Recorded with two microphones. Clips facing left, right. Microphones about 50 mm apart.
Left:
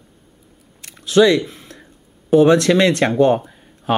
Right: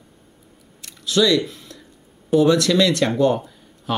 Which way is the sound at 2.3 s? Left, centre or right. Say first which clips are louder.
Left 4 dB; left.